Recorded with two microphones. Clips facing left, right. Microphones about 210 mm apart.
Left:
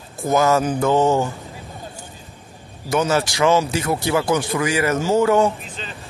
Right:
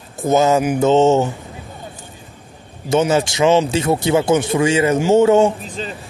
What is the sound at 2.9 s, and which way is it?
Speech, 20° right (ahead or behind).